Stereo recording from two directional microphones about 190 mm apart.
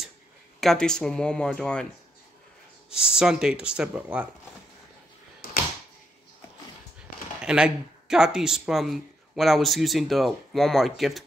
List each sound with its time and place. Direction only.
0.6 s speech: centre (ahead or behind)
2.9 s speech: 5° right (ahead or behind)
5.4 s a sound: 50° left (ahead or behind)
7.4 s speech: 5° right (ahead or behind)